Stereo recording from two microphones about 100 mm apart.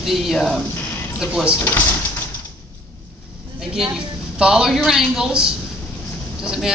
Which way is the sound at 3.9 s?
5° right (ahead or behind).